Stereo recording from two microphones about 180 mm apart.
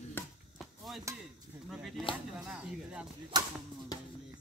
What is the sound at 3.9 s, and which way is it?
Music, 20° left (ahead or behind).